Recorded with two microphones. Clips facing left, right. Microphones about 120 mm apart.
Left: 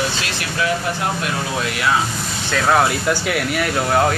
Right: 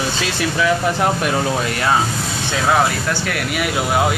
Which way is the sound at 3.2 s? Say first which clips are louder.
Left 1 dB; centre (ahead or behind).